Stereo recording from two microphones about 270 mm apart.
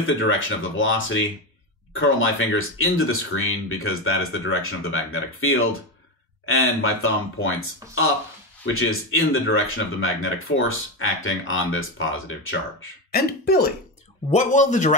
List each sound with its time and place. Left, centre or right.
0.0 s speech: left
13.1 s speech: left